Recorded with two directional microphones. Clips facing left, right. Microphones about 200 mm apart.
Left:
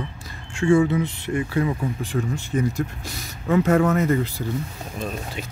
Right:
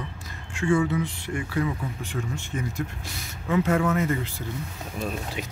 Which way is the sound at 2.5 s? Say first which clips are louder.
Left 8 dB; 40° left (ahead or behind).